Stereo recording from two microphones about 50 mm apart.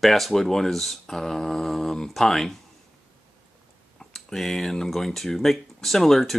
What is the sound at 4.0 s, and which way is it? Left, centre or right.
Speech, centre.